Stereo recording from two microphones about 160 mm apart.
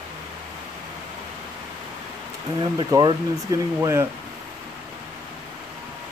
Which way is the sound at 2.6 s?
25° right (ahead or behind).